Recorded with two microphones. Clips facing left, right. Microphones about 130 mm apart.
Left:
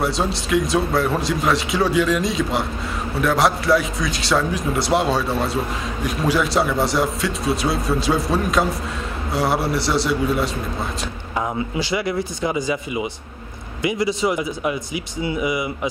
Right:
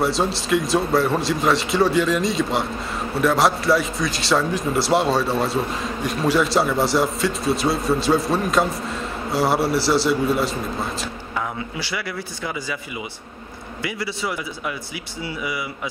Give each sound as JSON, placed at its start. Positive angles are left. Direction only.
{"t": 0.0, "sound": "speech", "side_deg": 0}
{"t": 11.7, "sound": "speech", "side_deg": 20}